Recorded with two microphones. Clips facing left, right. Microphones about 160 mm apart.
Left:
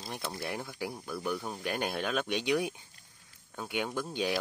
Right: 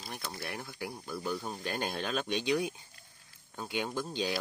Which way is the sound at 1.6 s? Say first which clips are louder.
Left 2 dB; 15° left (ahead or behind).